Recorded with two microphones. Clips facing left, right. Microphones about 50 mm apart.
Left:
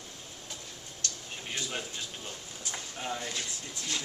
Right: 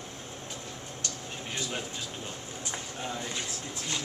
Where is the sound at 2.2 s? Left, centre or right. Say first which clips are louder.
Right 3 dB; right.